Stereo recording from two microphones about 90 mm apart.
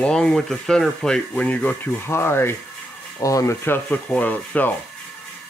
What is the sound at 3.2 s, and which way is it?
Speech, 35° left (ahead or behind).